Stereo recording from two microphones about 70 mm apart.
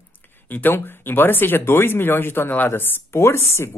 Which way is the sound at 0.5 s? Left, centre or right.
Left.